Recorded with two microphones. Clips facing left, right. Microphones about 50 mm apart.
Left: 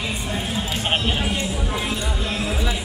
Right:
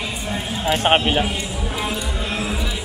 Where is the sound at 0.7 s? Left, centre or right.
Right.